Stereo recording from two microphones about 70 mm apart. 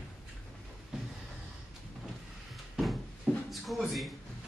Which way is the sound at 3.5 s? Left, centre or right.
Centre.